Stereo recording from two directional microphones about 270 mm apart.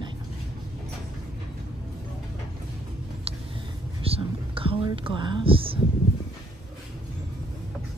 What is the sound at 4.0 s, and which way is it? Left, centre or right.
Whispering, centre.